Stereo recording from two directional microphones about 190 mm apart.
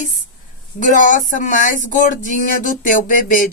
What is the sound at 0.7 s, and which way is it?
Speech, 40° left (ahead or behind).